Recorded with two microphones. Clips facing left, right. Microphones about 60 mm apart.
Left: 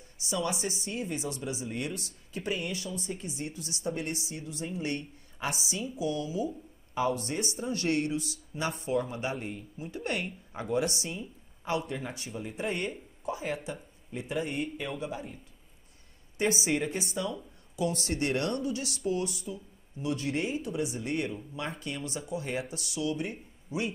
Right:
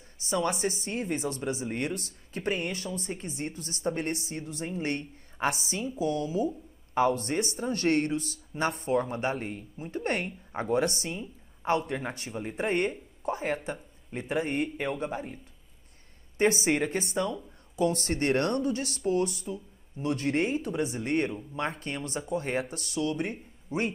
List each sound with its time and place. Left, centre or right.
0.2 s a woman's voice: right
16.3 s a woman's voice: right